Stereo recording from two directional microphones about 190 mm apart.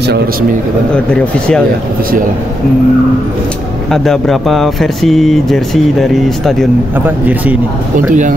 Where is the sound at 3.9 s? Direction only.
Centre (ahead or behind).